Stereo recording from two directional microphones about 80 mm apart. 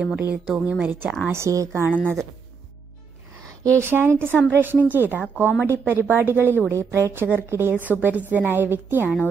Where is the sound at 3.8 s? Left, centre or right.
Right.